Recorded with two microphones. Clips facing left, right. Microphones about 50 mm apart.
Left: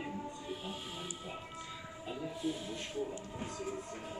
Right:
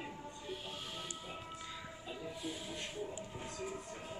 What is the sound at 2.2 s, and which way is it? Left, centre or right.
Speech, centre.